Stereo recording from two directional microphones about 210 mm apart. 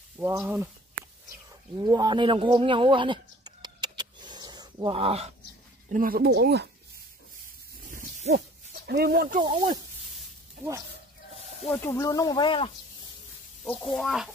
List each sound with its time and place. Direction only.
0.2 s speech: 10° right (ahead or behind)
1.8 s a sound: 20° right (ahead or behind)
5.9 s speech: 40° right (ahead or behind)
8.8 s speech: 50° right (ahead or behind)
9.4 s speech: 20° right (ahead or behind)
11.8 s speech: 15° left (ahead or behind)
13.7 s speech: centre (ahead or behind)